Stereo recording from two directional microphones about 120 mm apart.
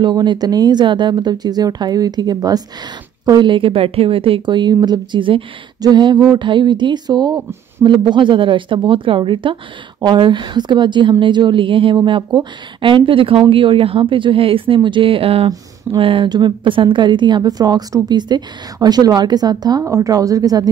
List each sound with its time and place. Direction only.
0.0 s a woman's voice: 40° right (ahead or behind)